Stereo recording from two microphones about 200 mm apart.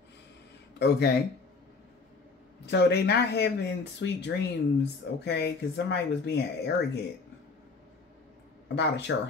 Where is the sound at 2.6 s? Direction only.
55° left (ahead or behind).